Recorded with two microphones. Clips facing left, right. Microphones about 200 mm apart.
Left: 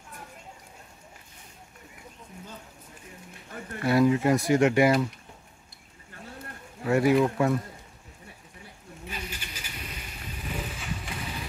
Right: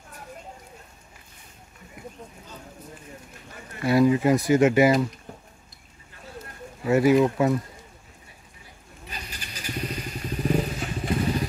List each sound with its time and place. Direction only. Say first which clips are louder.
3.8 s speech: right 2 dB; centre (ahead or behind)
6.9 s speech: right 3 dB; 5° right (ahead or behind)
9.1 s vehicle: even; 40° right (ahead or behind)